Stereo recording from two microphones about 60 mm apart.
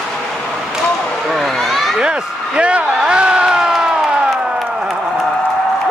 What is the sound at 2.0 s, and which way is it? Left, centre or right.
Speech, centre.